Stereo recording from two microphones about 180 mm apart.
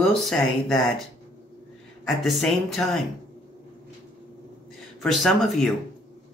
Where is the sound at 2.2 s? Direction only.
Centre (ahead or behind).